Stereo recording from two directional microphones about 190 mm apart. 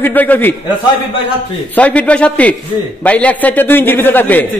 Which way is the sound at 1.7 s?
5° left (ahead or behind).